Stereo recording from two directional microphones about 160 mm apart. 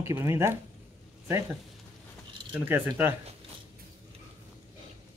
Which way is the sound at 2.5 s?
10° right (ahead or behind).